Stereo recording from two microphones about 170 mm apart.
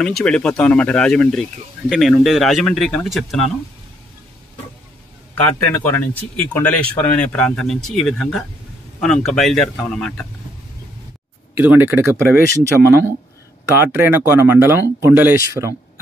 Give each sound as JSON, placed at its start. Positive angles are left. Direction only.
{"t": 0.0, "sound": "speech", "side_deg": 5}
{"t": 6.5, "sound": "speech", "side_deg": 10}
{"t": 11.5, "sound": "speech", "side_deg": -10}